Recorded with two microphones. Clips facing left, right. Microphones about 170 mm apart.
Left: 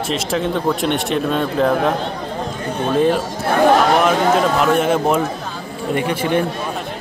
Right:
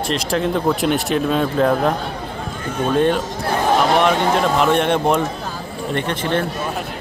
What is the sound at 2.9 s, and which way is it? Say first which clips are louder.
Speech: left 1 dB; centre (ahead or behind).